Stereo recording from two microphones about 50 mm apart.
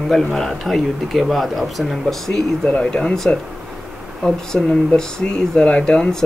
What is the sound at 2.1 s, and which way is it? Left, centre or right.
Speech, centre.